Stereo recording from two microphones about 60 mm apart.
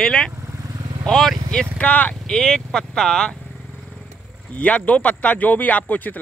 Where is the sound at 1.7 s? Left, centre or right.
Left.